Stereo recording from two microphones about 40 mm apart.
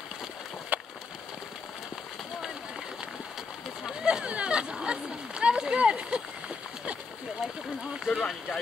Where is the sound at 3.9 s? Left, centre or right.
Centre.